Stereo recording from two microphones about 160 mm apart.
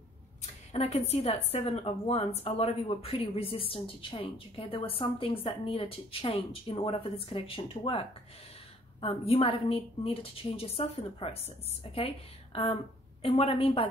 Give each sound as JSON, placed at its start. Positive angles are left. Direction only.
{"t": 0.4, "sound": "speech", "side_deg": 40}
{"t": 9.0, "sound": "speech", "side_deg": 40}